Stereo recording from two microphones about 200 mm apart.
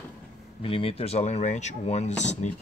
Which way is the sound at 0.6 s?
25° left (ahead or behind).